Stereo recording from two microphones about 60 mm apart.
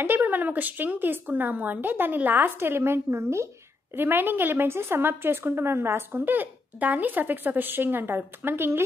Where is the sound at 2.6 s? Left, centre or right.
Right.